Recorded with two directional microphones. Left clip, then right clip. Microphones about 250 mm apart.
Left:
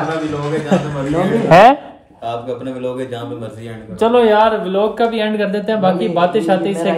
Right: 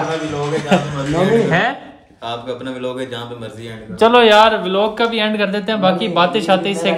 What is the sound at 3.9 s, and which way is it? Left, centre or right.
Speech, right.